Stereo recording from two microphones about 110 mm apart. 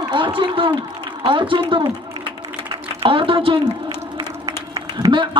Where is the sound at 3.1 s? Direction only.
55° right (ahead or behind).